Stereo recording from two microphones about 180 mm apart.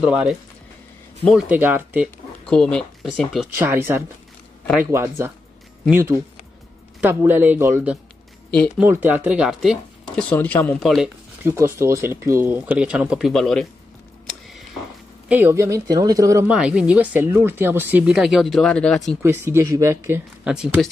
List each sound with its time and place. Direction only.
0.0 s speech: 5° right (ahead or behind)
2.0 s speech: 5° left (ahead or behind)
3.5 s speech: 15° right (ahead or behind)
11.4 s speech: 15° right (ahead or behind); by 13.7 s centre (ahead or behind)
15.2 s speech: 10° right (ahead or behind)
16.4 s speech: 5° right (ahead or behind)
19.2 s speech: 15° right (ahead or behind)
20.4 s speech: 5° right (ahead or behind)